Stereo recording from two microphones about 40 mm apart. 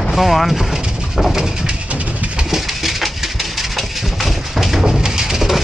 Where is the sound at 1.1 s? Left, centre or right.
Centre.